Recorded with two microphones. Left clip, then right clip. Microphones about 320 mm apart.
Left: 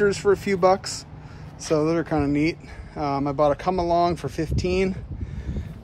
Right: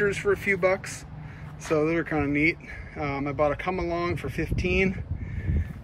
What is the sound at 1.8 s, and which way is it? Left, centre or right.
Speech, centre.